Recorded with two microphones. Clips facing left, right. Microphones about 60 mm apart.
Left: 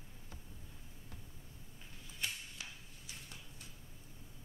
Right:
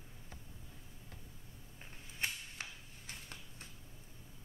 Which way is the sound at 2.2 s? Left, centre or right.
Right.